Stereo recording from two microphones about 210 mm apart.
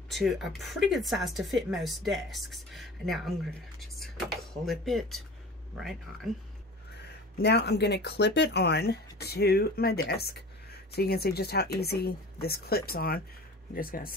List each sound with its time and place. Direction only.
0.1 s speech: centre (ahead or behind)
7.3 s speech: 50° left (ahead or behind)